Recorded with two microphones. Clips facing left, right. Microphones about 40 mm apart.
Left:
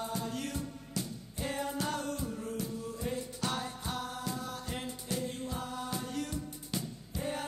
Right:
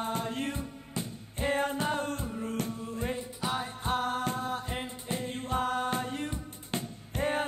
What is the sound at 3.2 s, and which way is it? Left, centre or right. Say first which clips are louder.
Music: right 3 dB; centre.